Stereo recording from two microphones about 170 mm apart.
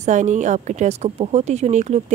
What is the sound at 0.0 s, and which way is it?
A woman's voice, 45° right (ahead or behind).